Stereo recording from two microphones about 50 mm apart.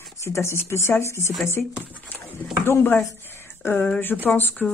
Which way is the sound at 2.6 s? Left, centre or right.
Left.